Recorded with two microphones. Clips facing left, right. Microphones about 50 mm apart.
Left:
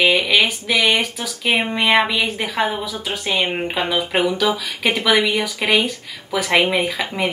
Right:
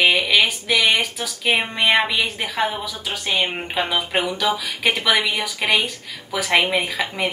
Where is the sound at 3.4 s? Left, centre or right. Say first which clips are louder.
Left 2 dB; centre.